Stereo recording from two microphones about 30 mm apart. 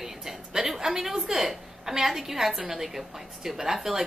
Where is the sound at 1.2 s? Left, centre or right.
Centre.